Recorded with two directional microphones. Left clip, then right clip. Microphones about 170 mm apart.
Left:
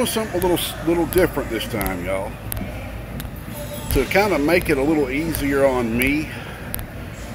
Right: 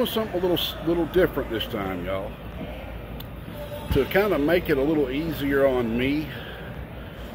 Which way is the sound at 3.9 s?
35° right (ahead or behind).